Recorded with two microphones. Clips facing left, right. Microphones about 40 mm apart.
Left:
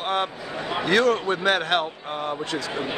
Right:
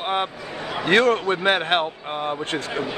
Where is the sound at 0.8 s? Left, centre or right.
Right.